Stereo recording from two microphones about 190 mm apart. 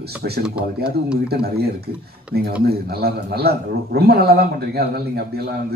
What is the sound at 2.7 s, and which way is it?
A man's voice, 55° right (ahead or behind).